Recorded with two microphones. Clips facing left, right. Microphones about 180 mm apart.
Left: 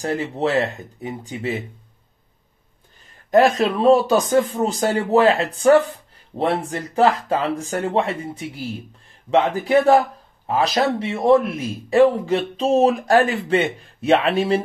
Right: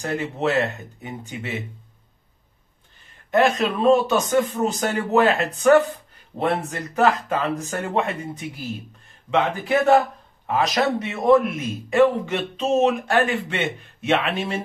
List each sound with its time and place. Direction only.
0.0 s speech: 30° left (ahead or behind)
3.3 s speech: 35° left (ahead or behind)